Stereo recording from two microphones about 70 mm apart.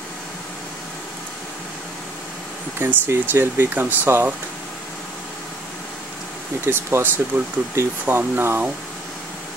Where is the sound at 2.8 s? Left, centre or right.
Right.